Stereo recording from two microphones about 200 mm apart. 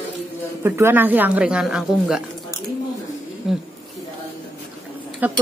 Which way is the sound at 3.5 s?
Centre (ahead or behind).